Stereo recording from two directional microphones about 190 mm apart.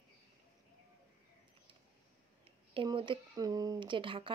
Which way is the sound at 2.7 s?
25° right (ahead or behind).